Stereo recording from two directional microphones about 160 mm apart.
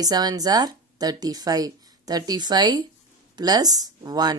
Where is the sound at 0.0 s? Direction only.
25° right (ahead or behind).